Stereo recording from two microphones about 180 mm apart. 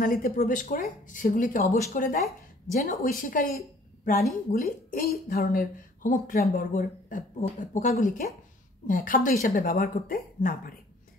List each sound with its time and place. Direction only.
0.0 s a woman's voice: 50° left (ahead or behind)